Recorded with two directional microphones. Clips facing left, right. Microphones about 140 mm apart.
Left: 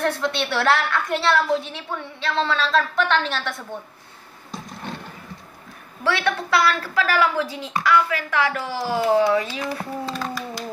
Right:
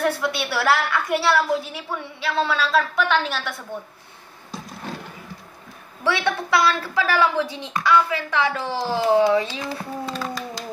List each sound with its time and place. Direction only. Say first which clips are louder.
0.0 s a woman's voice: even; 5° right (ahead or behind)
6.0 s a woman's voice: even; 15° right (ahead or behind)